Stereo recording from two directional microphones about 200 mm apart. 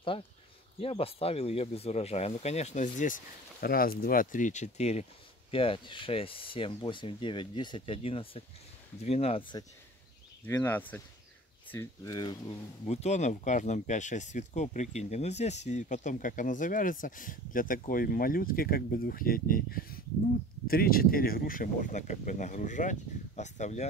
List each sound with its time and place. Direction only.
0.7 s speech: 30° left (ahead or behind)
10.4 s speech: 10° left (ahead or behind); by 23.9 s 35° left (ahead or behind)